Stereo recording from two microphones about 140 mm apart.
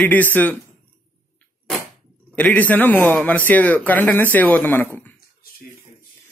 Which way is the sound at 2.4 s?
10° left (ahead or behind).